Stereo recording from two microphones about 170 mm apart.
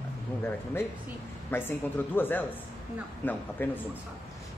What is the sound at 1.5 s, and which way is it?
A man's voice, 15° left (ahead or behind).